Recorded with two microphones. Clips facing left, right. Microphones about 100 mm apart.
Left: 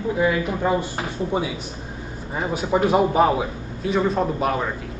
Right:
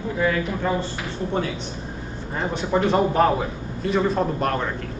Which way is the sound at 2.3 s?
10° left (ahead or behind).